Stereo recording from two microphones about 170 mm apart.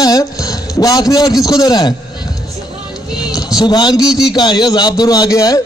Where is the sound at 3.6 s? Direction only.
25° left (ahead or behind).